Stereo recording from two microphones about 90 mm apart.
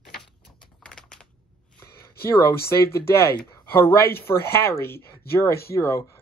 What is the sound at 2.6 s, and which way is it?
Speech, 30° left (ahead or behind).